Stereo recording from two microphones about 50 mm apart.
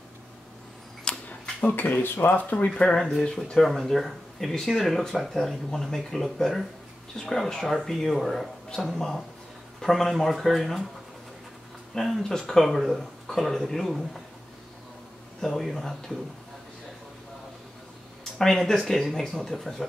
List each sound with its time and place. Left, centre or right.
1.0 s a sound: centre
2.1 s speech: left
2.5 s speech: left
3.0 s speech: centre
3.6 s speech: centre
12.2 s speech: centre
15.4 s speech: centre
18.4 s speech: centre